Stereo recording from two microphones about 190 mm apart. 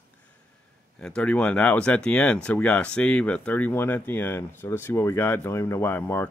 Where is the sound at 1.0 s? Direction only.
5° left (ahead or behind).